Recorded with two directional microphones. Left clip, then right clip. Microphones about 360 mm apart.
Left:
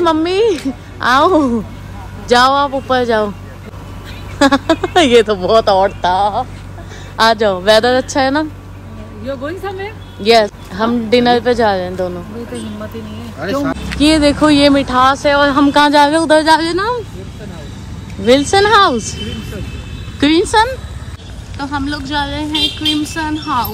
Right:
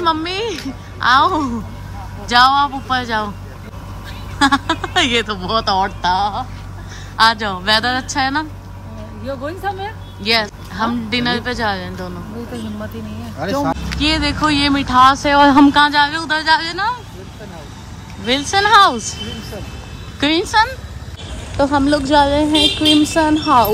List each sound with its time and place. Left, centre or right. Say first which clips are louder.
0.0 s speech: left 6 dB; centre
4.4 s speech: left 3 dB; centre
9.4 s speech: right 3 dB; centre
10.2 s speech: left 7 dB; centre
13.4 s speech: left 1 dB; right
13.8 s speech: left 6 dB; centre
18.4 s speech: right 2 dB; centre
20.2 s speech: left 3 dB; centre